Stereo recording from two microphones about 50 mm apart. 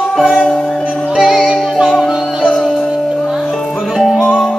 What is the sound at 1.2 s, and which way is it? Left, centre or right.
Music, centre.